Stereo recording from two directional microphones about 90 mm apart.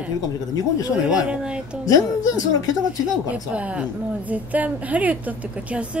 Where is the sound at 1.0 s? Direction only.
10° right (ahead or behind).